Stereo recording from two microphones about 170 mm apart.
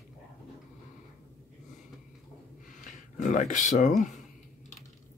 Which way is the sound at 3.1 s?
45° left (ahead or behind).